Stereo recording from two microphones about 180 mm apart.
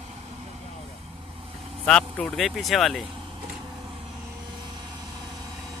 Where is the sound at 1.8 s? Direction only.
5° left (ahead or behind).